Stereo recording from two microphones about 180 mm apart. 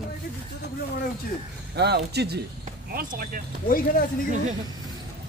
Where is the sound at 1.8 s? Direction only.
65° right (ahead or behind).